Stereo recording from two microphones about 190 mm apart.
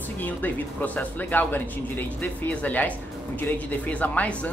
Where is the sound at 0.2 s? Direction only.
10° left (ahead or behind).